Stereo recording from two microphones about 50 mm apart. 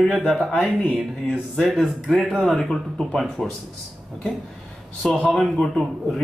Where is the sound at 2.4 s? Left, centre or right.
Centre.